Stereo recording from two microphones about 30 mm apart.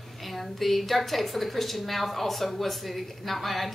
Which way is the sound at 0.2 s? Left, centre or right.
Centre.